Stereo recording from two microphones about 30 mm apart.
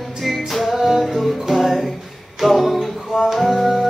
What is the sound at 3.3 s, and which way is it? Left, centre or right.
Music, centre.